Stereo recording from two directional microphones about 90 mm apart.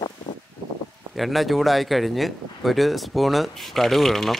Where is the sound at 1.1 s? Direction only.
Centre (ahead or behind).